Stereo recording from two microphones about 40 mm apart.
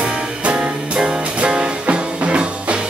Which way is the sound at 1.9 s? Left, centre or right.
Right.